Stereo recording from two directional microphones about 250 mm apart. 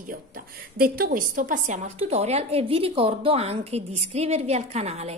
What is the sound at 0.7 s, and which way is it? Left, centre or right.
A woman's voice, right.